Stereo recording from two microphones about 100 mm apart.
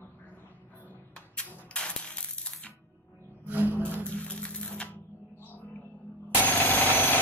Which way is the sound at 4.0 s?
10° left (ahead or behind).